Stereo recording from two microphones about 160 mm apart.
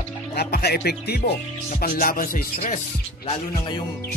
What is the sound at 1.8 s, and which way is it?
Music, 65° left (ahead or behind).